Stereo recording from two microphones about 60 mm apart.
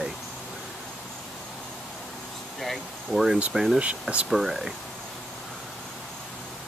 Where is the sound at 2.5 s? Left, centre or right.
Centre.